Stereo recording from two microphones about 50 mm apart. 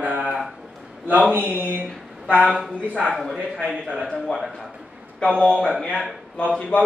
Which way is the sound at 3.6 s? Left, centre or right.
Right.